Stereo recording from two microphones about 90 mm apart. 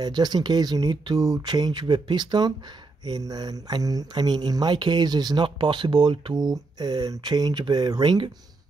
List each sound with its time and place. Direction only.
0.0 s speech: 50° right (ahead or behind)